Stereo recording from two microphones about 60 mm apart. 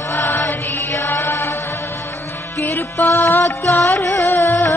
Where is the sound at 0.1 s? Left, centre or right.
Left.